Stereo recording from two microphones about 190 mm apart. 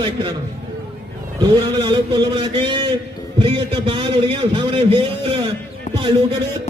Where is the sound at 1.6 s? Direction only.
25° right (ahead or behind).